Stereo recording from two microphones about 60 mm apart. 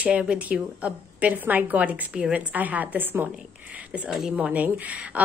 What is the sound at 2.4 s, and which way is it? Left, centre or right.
Speech, right.